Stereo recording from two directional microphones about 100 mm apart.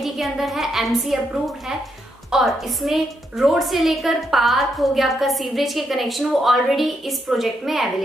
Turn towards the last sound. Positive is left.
turn(degrees=0)  # may be behind; listen again after turning